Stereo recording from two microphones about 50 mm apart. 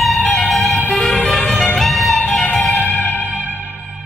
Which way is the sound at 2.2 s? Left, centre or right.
Left.